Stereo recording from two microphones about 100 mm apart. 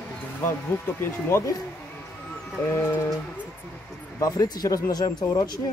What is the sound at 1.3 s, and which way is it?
Speech, 30° left (ahead or behind).